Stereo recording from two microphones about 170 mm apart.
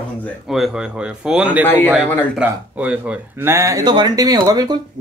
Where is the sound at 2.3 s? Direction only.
10° right (ahead or behind).